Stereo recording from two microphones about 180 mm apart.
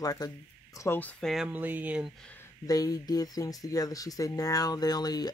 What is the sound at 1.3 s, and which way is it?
Speech, 5° right (ahead or behind).